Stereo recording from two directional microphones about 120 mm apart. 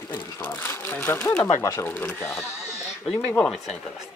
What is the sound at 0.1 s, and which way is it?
Speech, 15° left (ahead or behind).